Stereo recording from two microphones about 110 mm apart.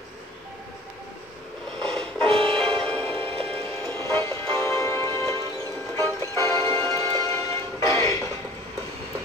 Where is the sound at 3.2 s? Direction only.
60° right (ahead or behind).